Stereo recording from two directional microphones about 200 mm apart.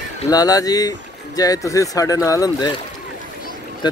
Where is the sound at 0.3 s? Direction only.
20° left (ahead or behind).